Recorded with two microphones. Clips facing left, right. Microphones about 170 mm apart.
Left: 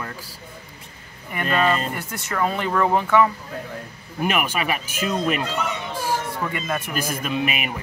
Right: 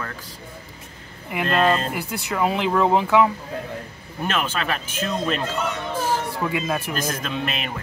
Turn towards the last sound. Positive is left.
turn(degrees=10)  # may be behind; listen again after turning